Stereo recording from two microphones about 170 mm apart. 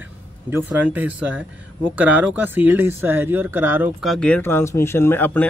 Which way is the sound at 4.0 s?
5° left (ahead or behind).